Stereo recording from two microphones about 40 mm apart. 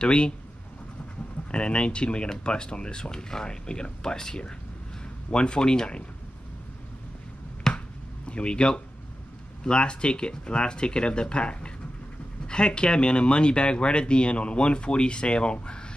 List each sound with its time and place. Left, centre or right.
0.0 s speech: left
1.5 s speech: left
7.7 s finger snapping: centre
8.3 s speech: left